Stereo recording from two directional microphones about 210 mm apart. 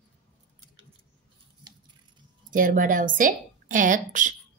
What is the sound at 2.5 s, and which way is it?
A woman's voice, 40° right (ahead or behind).